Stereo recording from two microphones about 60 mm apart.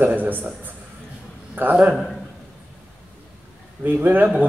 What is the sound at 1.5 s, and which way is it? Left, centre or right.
Speech, right.